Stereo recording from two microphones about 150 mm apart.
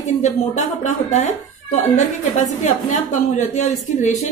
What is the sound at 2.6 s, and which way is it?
A woman's voice, 55° left (ahead or behind).